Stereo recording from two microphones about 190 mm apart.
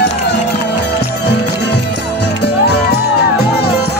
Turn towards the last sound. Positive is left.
turn(degrees=60)  # may be behind; listen again after turning